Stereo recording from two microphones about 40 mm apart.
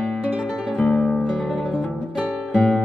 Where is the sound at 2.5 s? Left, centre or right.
Left.